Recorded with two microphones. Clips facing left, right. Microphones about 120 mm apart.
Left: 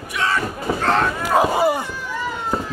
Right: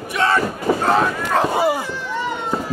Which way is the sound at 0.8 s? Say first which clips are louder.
Right 1 dB; 5° right (ahead or behind).